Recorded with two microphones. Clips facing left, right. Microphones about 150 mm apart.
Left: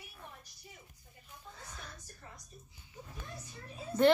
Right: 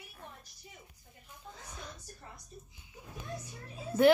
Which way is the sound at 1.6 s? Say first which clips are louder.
Right 3 dB; 15° right (ahead or behind).